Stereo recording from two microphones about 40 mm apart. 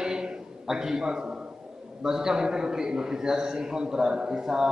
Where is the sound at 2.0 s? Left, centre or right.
Centre.